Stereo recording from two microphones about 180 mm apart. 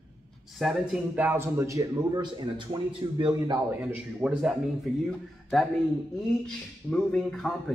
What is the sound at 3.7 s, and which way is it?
Speech, 10° right (ahead or behind).